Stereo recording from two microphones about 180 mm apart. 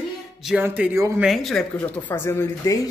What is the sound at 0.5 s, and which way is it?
Speech, 10° right (ahead or behind).